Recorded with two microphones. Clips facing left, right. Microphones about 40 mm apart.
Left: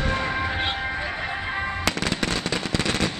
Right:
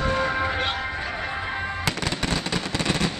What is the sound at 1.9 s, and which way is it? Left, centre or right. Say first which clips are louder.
Music: left 1 dB; left.